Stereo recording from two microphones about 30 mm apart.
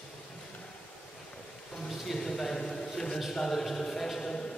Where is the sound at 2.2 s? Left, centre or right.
Centre.